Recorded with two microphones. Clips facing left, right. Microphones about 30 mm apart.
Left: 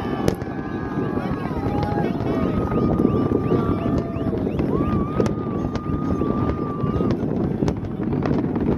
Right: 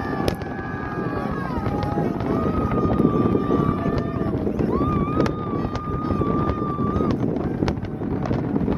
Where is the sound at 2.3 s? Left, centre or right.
Left.